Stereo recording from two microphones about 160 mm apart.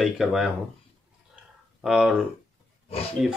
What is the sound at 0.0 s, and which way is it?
Speech, 5° right (ahead or behind).